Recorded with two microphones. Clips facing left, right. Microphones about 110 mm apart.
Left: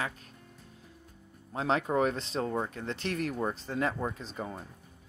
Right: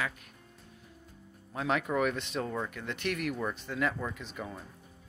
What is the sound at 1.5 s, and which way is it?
Speech, 30° left (ahead or behind).